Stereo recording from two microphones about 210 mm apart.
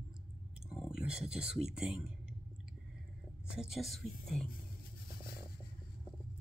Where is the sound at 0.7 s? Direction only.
Centre (ahead or behind).